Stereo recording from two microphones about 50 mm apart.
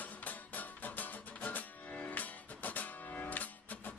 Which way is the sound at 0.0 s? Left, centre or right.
Left.